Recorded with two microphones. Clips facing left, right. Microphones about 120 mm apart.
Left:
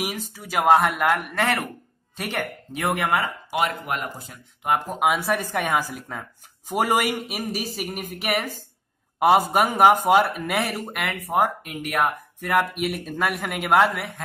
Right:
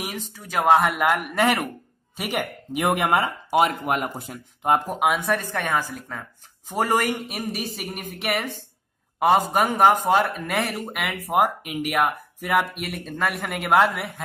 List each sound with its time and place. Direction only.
0.0 s speech: 5° left (ahead or behind); by 3.3 s 20° right (ahead or behind)
3.4 s speech: 40° right (ahead or behind)
4.9 s speech: centre (ahead or behind)
11.3 s speech: 15° right (ahead or behind)